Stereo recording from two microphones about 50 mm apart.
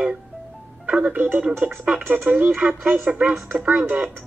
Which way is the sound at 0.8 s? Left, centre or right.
Right.